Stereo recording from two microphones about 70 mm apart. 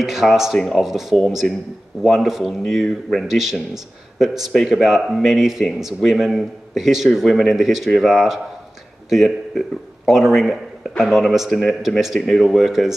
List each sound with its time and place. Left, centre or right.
0.0 s speech: centre